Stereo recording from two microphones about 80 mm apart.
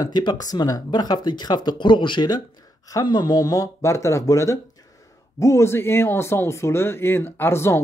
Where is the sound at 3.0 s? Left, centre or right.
Left.